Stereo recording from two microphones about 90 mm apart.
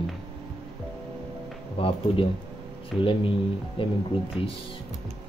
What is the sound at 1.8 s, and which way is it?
Speech, 85° left.